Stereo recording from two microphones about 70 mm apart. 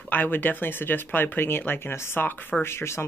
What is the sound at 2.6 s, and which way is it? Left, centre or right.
Speech, left.